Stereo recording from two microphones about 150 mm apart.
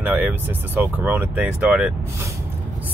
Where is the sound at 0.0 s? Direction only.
10° right (ahead or behind).